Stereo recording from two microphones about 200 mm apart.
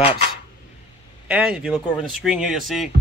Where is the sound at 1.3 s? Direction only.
5° right (ahead or behind).